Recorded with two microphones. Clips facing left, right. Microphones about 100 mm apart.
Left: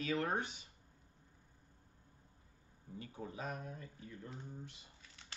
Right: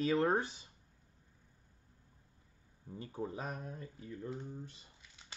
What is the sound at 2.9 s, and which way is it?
Speech, 30° right (ahead or behind).